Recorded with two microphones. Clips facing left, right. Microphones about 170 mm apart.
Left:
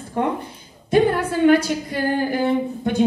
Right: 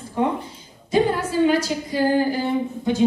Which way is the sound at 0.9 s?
60° left (ahead or behind).